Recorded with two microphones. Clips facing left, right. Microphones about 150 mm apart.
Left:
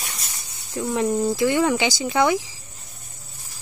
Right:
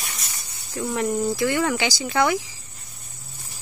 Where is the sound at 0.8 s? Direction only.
20° left (ahead or behind).